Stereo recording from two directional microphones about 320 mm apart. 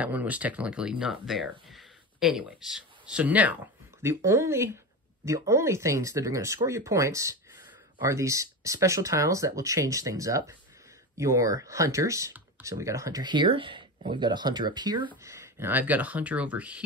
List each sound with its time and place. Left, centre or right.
0.0 s speech: centre